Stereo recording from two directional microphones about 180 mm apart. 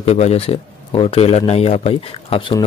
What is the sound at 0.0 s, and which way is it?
Speech, 35° left (ahead or behind).